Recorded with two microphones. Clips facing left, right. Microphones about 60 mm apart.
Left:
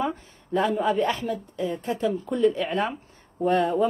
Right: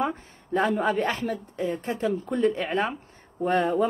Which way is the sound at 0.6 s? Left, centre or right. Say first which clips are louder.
Left 1 dB; right.